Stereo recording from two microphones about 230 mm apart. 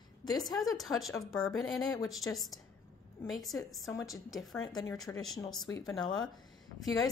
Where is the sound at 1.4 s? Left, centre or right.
Centre.